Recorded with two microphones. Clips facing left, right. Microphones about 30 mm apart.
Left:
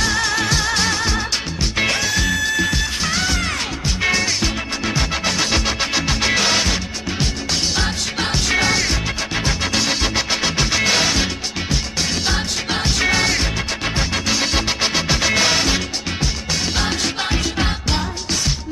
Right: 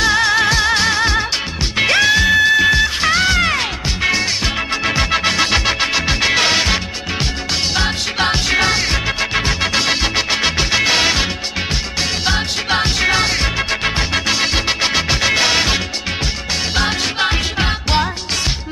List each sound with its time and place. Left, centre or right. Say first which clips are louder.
0.0 s music: right 6 dB; right
1.8 s music: right 7 dB; right
4.8 s music: right 4 dB; right
12.3 s music: right 4 dB; right
14.5 s music: right 3 dB; centre